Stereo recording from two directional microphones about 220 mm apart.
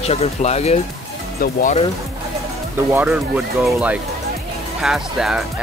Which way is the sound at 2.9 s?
5° right (ahead or behind).